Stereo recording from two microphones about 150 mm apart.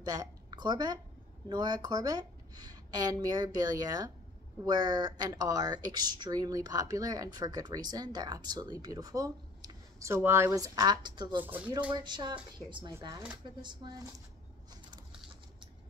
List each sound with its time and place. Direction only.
0.0 s a woman's voice: 25° right (ahead or behind)
11.4 s speech: 10° right (ahead or behind)
11.9 s speech: 30° right (ahead or behind)
14.7 s a sound: 30° right (ahead or behind)